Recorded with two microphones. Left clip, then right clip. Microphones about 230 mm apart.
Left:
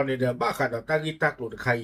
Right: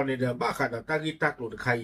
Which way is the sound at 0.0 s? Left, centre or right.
Centre.